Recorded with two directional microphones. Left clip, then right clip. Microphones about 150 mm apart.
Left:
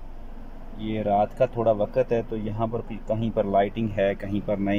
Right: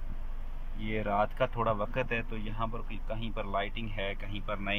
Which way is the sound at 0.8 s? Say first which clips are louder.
Left 7 dB; 30° left (ahead or behind).